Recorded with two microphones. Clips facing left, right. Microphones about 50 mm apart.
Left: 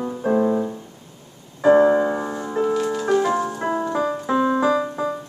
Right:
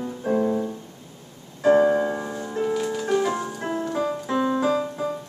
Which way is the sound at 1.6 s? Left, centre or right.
Centre.